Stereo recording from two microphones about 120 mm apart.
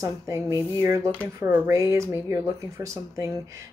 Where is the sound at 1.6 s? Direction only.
25° right (ahead or behind).